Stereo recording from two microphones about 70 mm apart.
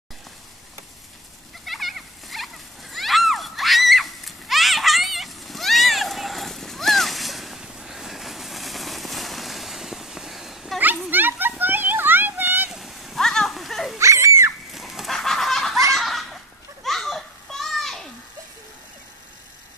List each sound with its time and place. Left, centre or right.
1.7 s splash: centre
11.1 s a sound: right
12.7 s dog: centre
13.9 s dog: right
14.7 s fowl: centre
15.1 s chicken: centre
15.9 s a sound: centre
16.8 s children playing: centre